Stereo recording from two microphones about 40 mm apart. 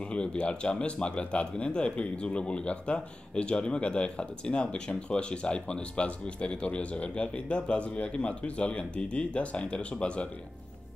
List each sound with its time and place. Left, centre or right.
0.1 s speech: left